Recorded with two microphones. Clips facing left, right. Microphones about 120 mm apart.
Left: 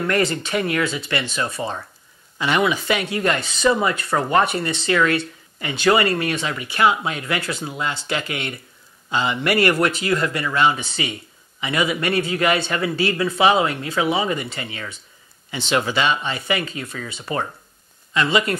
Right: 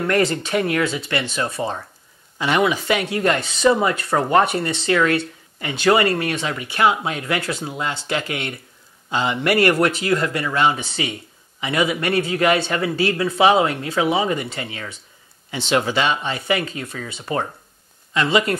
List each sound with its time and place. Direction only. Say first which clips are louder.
0.0 s speech: right 2 dB; 45° right (ahead or behind)
18.1 s speech: right 1 dB; 45° right (ahead or behind)